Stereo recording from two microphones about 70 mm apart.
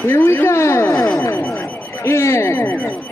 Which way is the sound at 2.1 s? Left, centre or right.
Left.